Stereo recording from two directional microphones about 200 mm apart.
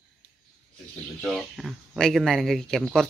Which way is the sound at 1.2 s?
5° left (ahead or behind).